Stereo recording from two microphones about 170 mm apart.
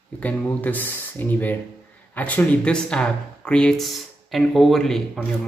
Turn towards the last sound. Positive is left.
turn(degrees=0)  # may be behind; listen again after turning